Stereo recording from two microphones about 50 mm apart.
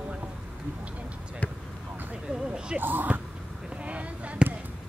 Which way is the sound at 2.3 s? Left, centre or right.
Right.